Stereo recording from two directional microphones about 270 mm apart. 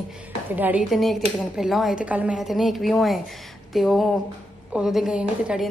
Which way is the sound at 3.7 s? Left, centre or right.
Centre.